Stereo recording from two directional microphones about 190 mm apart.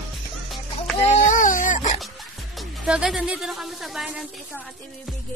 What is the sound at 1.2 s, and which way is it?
Dog, 45° left (ahead or behind).